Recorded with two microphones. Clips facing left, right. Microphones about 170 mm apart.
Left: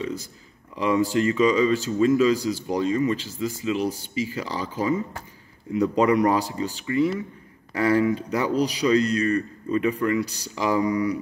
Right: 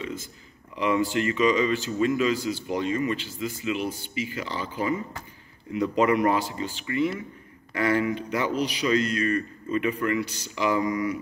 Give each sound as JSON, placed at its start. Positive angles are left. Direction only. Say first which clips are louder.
{"t": 0.0, "sound": "speech", "louder": "left 4 dB", "side_deg": 35}